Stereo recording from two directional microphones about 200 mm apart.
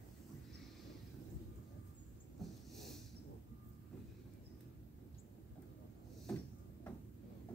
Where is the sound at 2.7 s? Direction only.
Centre (ahead or behind).